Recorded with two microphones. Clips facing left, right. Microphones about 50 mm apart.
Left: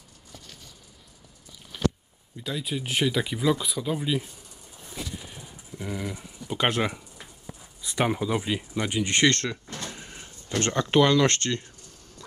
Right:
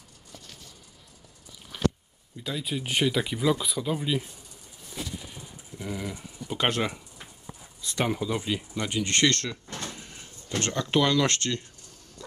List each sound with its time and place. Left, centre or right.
1.7 s biting: centre
2.3 s speech: centre
5.3 s a sound: centre
7.8 s speech: centre
9.9 s vehicle: centre
10.7 s speech: centre